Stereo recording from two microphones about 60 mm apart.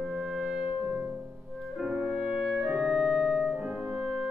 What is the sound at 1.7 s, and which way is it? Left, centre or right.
Music, centre.